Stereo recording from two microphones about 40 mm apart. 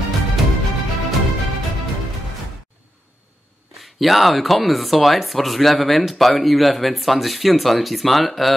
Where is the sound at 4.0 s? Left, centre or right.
Centre.